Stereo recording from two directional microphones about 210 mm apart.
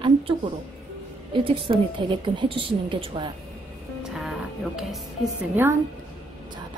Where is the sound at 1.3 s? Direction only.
25° right (ahead or behind).